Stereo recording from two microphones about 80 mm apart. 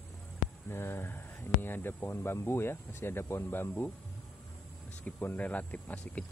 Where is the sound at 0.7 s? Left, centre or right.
Left.